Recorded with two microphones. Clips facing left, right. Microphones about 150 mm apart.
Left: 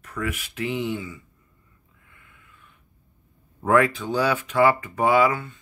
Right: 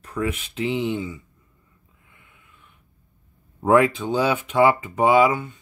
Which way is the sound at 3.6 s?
20° right (ahead or behind).